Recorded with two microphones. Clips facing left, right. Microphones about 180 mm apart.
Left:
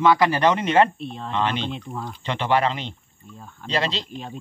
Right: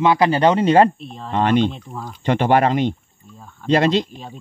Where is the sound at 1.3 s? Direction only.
45° right (ahead or behind).